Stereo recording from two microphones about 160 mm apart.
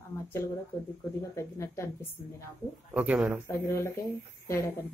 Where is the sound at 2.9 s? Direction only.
10° right (ahead or behind).